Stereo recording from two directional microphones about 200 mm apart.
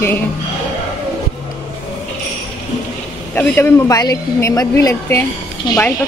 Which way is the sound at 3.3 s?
10° left (ahead or behind).